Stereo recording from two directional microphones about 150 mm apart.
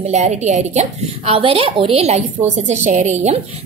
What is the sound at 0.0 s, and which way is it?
A woman's voice, 50° right (ahead or behind).